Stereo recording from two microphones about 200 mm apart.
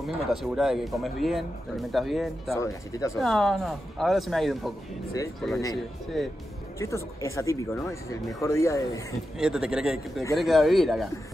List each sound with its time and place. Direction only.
0.0 s speech: centre (ahead or behind)
2.5 s speech: 15° left (ahead or behind)
3.2 s speech: centre (ahead or behind)
6.8 s speech: 15° left (ahead or behind)
9.4 s speech: 5° right (ahead or behind)